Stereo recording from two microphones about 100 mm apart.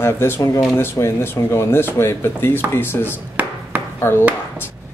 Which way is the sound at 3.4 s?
15° right (ahead or behind).